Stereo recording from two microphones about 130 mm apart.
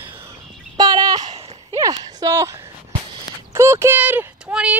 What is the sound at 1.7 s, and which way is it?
Speech, 25° right (ahead or behind).